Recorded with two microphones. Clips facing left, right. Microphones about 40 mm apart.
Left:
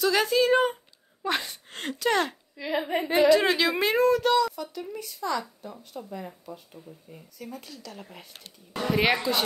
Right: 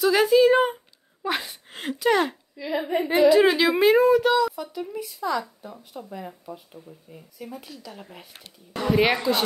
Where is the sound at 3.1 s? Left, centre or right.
Centre.